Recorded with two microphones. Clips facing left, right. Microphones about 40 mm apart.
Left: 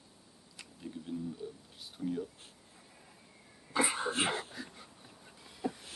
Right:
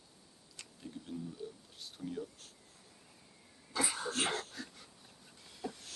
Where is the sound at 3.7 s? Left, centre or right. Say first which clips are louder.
Left 5 dB; left.